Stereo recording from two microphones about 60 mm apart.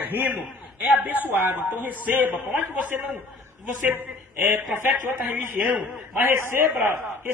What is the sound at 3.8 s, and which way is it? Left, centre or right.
A man's voice, right.